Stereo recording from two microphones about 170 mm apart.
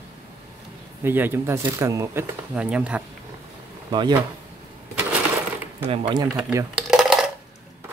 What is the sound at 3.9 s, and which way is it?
Speech, 25° right (ahead or behind).